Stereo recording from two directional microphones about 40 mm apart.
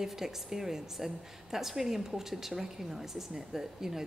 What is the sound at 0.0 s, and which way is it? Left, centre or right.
A woman's voice, centre.